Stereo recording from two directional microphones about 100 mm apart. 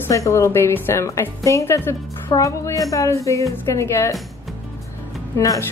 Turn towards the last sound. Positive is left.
turn(degrees=35)  # may be behind; listen again after turning